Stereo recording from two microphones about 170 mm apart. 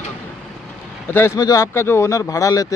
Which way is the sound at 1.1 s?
15° left (ahead or behind).